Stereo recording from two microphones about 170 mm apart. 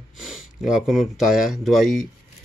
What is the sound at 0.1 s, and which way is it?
Speech, centre (ahead or behind).